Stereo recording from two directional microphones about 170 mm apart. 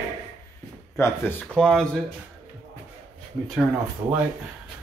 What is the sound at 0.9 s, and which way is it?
Speech, 15° left (ahead or behind).